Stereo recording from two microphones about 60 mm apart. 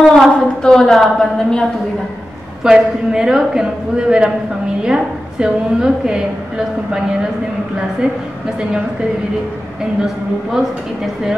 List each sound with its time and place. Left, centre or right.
0.0 s a woman's voice: centre
2.6 s a woman's voice: centre